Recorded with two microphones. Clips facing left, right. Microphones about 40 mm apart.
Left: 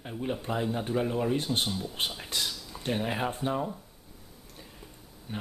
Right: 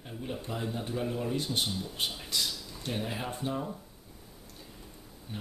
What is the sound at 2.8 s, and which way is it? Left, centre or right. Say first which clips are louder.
Speech: left 5 dB; left.